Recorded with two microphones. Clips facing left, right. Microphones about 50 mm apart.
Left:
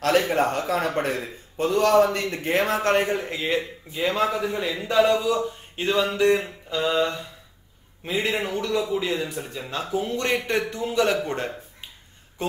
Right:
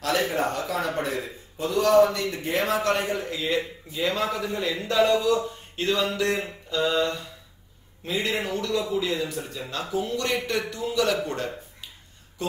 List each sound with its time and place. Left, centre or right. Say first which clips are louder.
0.3 s a man's voice: left 4 dB; left
3.5 s a man's voice: left 1 dB; centre